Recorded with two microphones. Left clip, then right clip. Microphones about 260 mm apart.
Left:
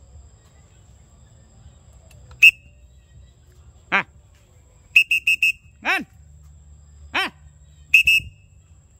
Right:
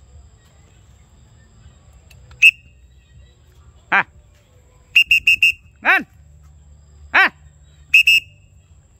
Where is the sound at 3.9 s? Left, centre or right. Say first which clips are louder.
Right 5 dB; centre.